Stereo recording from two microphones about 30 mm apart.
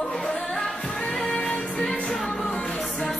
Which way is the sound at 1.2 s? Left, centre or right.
Left.